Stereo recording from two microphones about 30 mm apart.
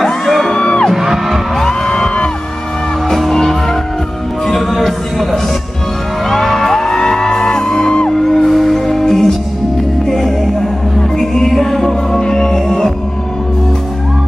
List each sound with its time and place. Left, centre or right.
0.0 s music: centre
0.5 s music: left
0.9 s music: centre
3.1 s music: centre
4.6 s a sound: centre
6.2 s music: centre
8.2 s music: centre
12.2 s music: left